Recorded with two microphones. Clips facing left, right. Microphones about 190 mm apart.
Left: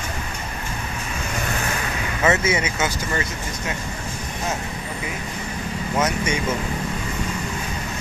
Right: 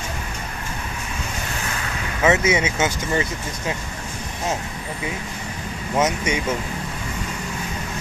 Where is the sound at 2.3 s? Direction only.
20° right (ahead or behind).